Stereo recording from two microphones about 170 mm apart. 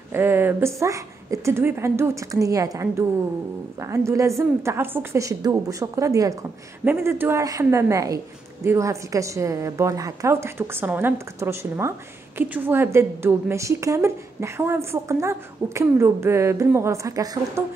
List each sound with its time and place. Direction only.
0.1 s a woman's voice: 15° right (ahead or behind)